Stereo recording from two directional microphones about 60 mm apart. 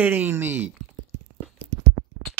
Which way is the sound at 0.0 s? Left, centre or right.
Right.